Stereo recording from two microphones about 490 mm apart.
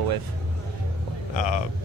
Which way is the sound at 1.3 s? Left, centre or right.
Left.